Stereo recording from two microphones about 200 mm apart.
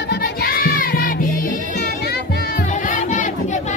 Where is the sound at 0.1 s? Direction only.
50° left (ahead or behind).